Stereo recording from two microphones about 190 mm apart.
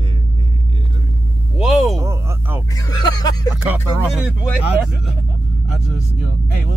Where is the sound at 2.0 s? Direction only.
15° right (ahead or behind).